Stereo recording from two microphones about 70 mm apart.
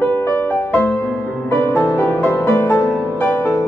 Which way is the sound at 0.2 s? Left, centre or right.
Left.